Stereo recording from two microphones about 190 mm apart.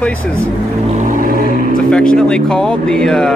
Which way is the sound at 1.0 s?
45° right (ahead or behind).